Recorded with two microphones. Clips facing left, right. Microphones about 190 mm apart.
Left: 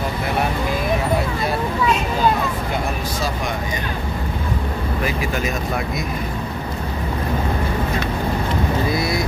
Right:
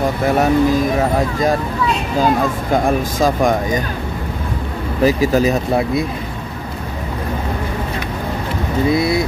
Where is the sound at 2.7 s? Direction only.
50° right (ahead or behind).